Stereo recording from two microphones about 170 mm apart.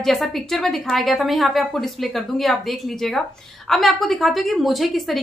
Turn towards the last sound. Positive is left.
turn(degrees=0)  # may be behind; listen again after turning